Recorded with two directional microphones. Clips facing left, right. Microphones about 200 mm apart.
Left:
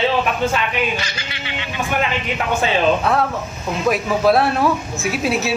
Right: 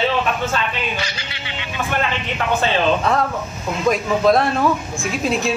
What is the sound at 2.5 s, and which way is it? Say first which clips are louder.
Speech: left 1 dB; 5° left (ahead or behind).